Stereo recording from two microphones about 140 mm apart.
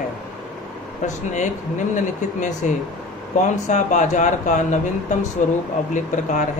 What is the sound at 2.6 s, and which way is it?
Speech, 60° left (ahead or behind).